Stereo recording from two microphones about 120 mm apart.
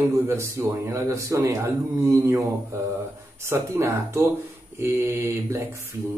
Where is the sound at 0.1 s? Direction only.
25° right (ahead or behind).